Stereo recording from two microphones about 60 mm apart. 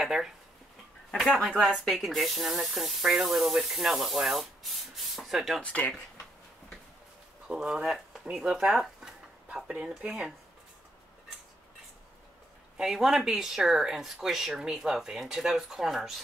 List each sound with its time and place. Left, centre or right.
0.0 s speech: centre
1.5 s speech: centre
1.9 s speech: centre
5.6 s speech: left
7.4 s speech: centre
10.0 s speech: centre
12.7 s speech: centre